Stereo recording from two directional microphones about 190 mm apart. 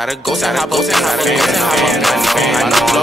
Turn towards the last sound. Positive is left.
turn(degrees=0)  # may be behind; listen again after turning